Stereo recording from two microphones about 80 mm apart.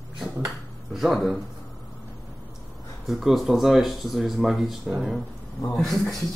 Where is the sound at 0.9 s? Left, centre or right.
Centre.